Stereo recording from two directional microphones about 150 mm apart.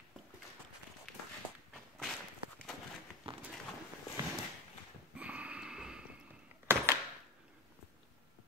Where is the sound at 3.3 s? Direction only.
35° right (ahead or behind).